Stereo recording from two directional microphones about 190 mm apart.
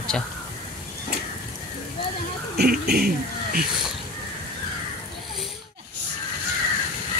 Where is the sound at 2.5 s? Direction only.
55° right (ahead or behind).